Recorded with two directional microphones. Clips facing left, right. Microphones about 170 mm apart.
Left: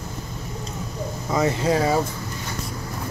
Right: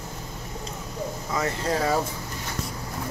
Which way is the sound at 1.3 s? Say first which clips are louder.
Left 6 dB; 15° left (ahead or behind).